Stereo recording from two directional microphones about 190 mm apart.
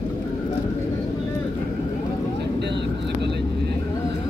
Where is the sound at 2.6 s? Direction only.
65° right (ahead or behind).